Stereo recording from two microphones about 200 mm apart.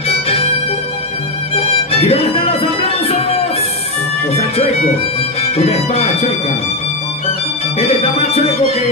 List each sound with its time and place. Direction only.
1.5 s music: 30° left (ahead or behind)
4.6 s music: 30° left (ahead or behind)
8.0 s music: 30° left (ahead or behind)